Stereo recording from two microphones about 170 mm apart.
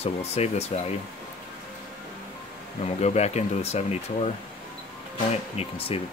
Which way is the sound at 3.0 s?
40° left (ahead or behind).